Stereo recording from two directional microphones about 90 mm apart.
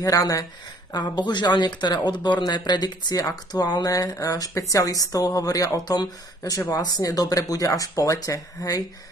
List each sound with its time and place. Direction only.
0.0 s speech: 40° left (ahead or behind)
0.9 s speech: 50° left (ahead or behind)